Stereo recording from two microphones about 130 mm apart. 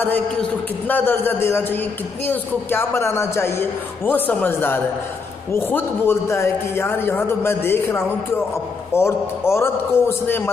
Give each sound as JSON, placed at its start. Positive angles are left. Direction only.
{"t": 0.0, "sound": "a man's voice", "side_deg": 15}